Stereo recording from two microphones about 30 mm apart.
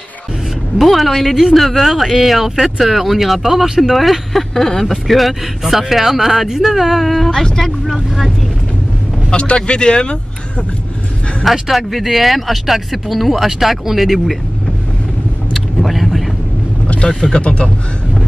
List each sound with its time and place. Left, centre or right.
0.7 s speech: centre
3.9 s speech: centre
9.3 s speech: left
11.6 s speech: centre
15.5 s vehicle: centre
17.0 s speech: left